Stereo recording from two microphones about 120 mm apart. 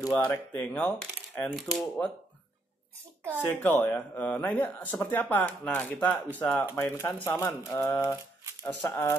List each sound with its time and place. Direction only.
0.1 s speech: 10° left (ahead or behind)
1.5 s speech: centre (ahead or behind)
3.4 s speech: 15° left (ahead or behind)